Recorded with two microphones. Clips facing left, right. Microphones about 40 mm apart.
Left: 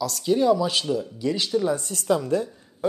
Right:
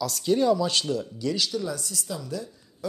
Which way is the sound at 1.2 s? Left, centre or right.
Left.